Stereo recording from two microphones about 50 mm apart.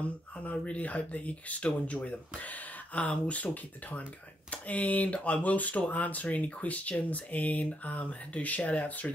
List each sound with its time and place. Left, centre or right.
0.0 s speech: left
4.5 s speech: left